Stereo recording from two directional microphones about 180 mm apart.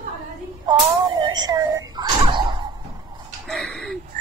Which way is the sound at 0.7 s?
20° right (ahead or behind).